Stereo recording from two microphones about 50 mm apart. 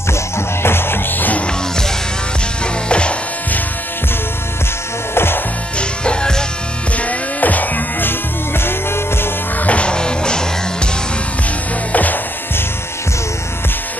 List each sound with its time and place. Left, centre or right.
0.6 s music: left
2.6 s music: left
5.1 s music: left
5.8 s music: centre
7.0 s music: left
8.5 s music: left
9.6 s music: left
11.9 s music: left